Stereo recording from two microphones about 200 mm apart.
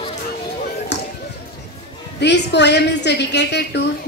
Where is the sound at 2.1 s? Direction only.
60° left (ahead or behind).